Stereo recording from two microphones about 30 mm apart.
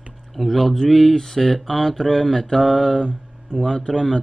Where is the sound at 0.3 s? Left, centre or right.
Centre.